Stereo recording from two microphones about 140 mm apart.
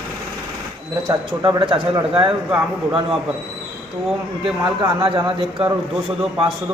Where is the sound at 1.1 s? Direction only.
30° right (ahead or behind).